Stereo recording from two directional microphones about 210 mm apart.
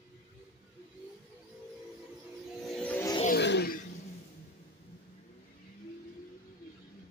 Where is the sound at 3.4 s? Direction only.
50° left (ahead or behind).